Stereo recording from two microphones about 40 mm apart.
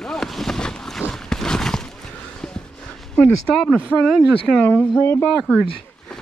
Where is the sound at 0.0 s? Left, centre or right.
Centre.